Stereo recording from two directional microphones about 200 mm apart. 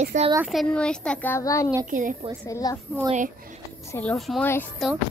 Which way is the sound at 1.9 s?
40° right (ahead or behind).